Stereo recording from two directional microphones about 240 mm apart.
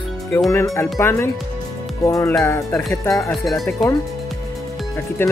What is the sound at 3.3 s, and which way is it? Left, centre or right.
Speech, centre.